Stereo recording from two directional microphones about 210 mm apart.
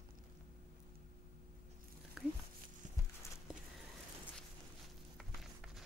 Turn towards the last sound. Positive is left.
turn(degrees=0)  # may be behind; listen again after turning